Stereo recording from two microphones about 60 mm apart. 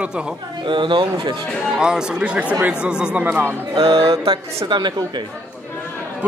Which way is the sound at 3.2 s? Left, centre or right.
Right.